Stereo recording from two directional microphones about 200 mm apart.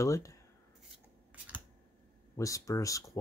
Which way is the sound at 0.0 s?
15° left (ahead or behind).